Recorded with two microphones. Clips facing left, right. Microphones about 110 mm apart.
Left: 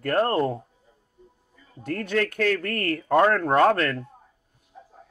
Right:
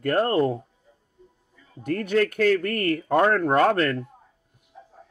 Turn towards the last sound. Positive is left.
turn(degrees=-5)  # may be behind; listen again after turning